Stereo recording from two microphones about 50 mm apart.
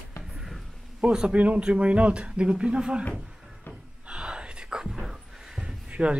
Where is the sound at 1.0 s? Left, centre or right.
Right.